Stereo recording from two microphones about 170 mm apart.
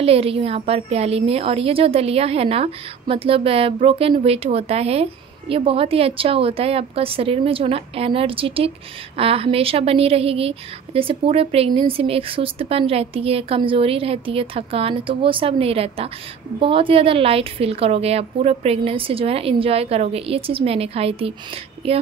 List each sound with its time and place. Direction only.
0.0 s a woman's voice: 35° right (ahead or behind)